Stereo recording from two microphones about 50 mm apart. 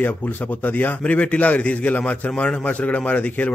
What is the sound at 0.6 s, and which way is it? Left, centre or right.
A man's voice, left.